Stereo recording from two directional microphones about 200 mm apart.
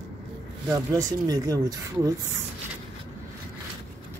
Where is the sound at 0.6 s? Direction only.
15° right (ahead or behind).